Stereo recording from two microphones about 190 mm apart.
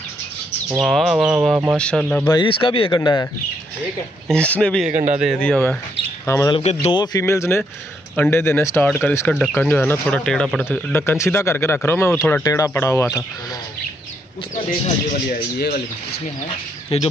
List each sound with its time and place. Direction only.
0.7 s speech: centre (ahead or behind)
2.2 s speech: 25° left (ahead or behind)
4.3 s speech: 5° left (ahead or behind)
4.9 s a man's voice: 40° right (ahead or behind)
5.2 s speech: centre (ahead or behind)
6.2 s speech: 15° left (ahead or behind)
6.5 s speech: 35° left (ahead or behind)
7.0 s speech: 20° left (ahead or behind)
15.2 s speech: 50° left (ahead or behind)
16.9 s speech: 30° left (ahead or behind)